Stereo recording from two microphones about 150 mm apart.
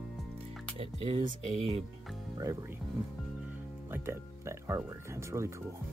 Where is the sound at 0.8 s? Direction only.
40° right (ahead or behind).